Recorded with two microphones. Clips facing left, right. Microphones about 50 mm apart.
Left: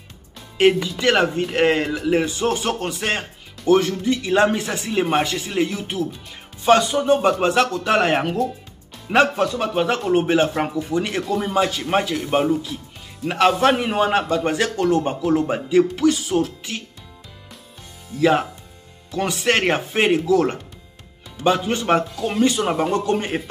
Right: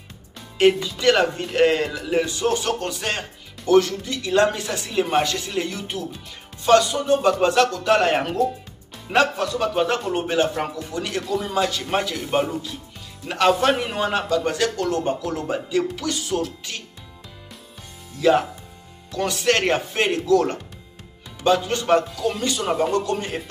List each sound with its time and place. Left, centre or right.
0.6 s speech: centre
6.6 s speech: centre
8.9 s music: centre
9.6 s speech: centre
10.1 s speech: centre
19.1 s speech: centre